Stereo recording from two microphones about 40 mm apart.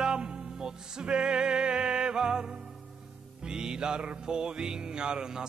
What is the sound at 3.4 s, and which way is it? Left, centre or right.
Music, right.